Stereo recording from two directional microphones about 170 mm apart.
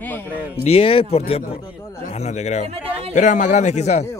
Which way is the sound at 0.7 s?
35° left (ahead or behind).